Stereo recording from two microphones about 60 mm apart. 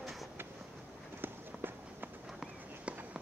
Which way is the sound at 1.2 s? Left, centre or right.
Right.